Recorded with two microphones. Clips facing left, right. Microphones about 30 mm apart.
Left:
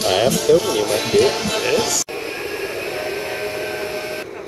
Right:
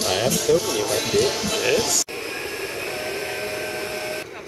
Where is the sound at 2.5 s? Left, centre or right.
Left.